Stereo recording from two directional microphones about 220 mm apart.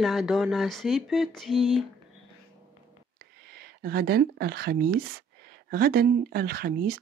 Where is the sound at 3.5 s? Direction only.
45° right (ahead or behind).